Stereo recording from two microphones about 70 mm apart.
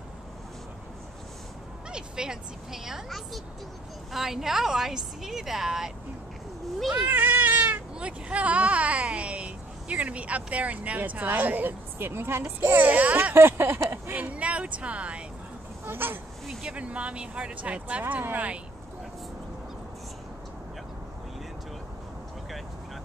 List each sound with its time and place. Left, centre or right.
1.9 s speech: centre
7.1 s speech: right
13.4 s a sound: right
13.8 s speech: right
15.8 s speech: right
16.6 s speech: centre